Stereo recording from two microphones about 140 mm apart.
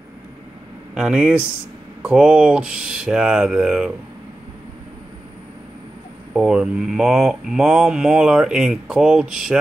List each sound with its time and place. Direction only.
0.9 s speech: 5° right (ahead or behind)
6.3 s speech: 5° right (ahead or behind)